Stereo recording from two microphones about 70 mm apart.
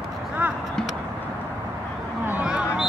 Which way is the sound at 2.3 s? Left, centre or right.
Centre.